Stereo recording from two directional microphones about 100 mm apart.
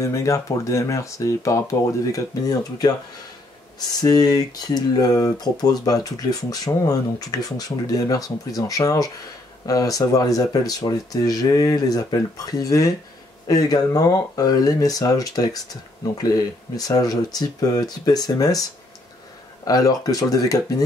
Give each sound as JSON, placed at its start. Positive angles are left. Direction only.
{"t": 0.0, "sound": "speech", "side_deg": 30}
{"t": 4.0, "sound": "speech", "side_deg": 40}
{"t": 19.6, "sound": "speech", "side_deg": 35}